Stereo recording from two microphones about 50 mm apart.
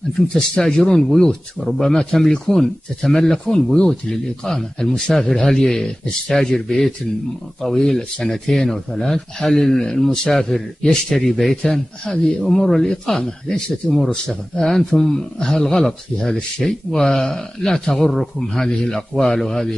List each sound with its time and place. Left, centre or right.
0.3 s speech: centre